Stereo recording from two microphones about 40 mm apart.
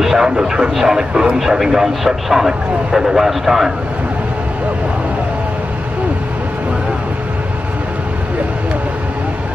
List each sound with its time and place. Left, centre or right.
0.0 s a man's voice: centre